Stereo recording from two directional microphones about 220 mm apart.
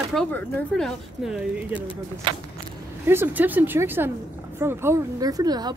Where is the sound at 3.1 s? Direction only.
10° right (ahead or behind).